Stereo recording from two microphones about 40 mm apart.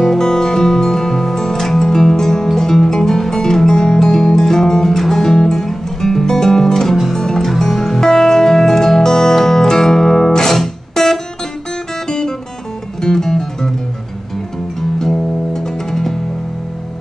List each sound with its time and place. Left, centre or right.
0.1 s music: centre
14.8 s music: centre